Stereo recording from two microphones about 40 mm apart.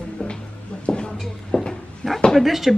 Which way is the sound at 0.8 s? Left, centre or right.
Left.